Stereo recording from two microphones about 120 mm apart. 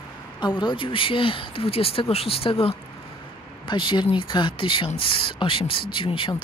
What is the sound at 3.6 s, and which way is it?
Speech, 40° left (ahead or behind).